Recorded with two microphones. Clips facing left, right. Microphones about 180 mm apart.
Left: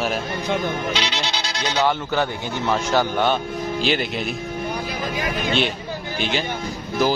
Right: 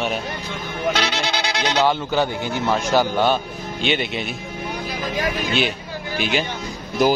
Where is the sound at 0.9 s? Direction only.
55° right (ahead or behind).